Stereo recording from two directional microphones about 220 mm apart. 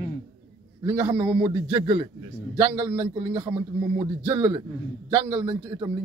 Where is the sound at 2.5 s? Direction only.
10° right (ahead or behind).